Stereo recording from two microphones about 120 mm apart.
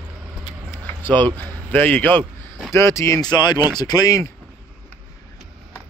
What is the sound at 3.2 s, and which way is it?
Speech, 35° left (ahead or behind).